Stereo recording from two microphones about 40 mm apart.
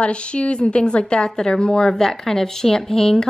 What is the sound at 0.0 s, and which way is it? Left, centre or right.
A woman's voice, left.